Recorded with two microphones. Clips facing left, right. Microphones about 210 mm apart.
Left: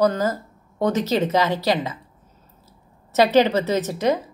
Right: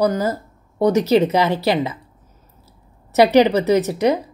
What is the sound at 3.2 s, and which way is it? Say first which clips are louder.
Speech: right 3 dB; 15° right (ahead or behind).